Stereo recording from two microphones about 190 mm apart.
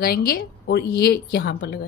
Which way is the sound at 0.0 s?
55° left (ahead or behind).